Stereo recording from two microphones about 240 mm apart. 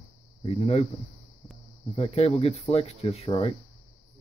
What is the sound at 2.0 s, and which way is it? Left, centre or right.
Speech, left.